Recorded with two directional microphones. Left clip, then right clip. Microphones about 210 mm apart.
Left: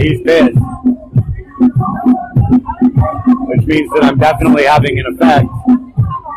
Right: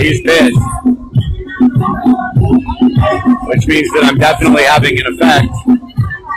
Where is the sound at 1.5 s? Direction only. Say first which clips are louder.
Right 1 dB; 40° right (ahead or behind).